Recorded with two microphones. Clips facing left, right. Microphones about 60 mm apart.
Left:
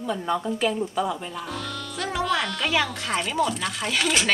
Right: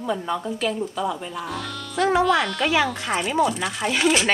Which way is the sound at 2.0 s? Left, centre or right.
Right.